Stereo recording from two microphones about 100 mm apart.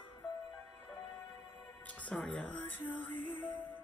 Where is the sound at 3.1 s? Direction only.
20° left (ahead or behind).